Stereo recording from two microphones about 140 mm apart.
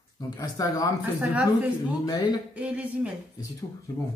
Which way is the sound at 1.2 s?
10° right (ahead or behind).